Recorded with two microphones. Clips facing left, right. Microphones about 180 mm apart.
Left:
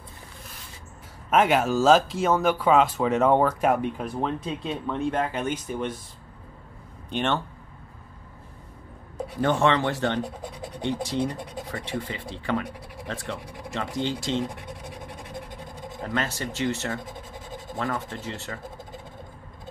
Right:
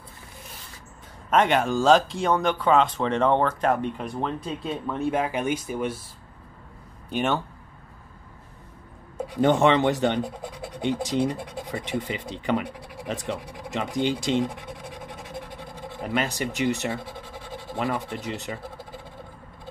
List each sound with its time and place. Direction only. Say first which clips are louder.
1.3 s speech: even; 5° left (ahead or behind)
7.1 s speech: right 1 dB; 5° right (ahead or behind)
9.4 s speech: right 3 dB; 15° right (ahead or behind)
16.0 s speech: right 2 dB; 15° right (ahead or behind)